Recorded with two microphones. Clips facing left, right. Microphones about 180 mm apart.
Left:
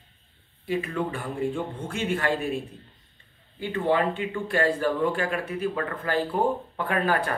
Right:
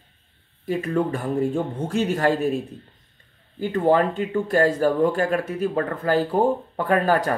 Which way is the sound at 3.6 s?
40° right (ahead or behind).